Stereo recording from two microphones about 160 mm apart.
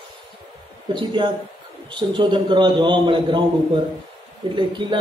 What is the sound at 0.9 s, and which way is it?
A man's voice, 30° right (ahead or behind).